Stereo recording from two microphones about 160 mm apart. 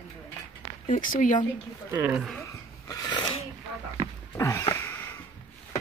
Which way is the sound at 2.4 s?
20° left (ahead or behind).